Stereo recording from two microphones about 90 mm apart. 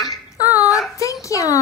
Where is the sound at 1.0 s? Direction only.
35° left (ahead or behind).